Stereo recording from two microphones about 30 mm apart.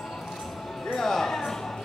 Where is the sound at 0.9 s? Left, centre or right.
Centre.